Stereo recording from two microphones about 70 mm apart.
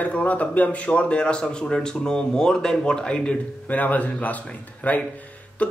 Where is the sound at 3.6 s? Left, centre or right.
Left.